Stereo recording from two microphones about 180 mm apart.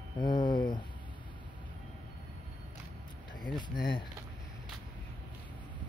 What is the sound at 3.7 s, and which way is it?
Speech, 25° left (ahead or behind).